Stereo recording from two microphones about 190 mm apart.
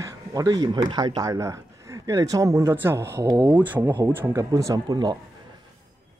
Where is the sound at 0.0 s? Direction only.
20° right (ahead or behind).